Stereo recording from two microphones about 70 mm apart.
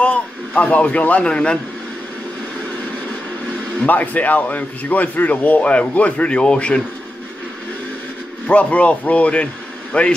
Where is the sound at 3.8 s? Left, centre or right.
Left.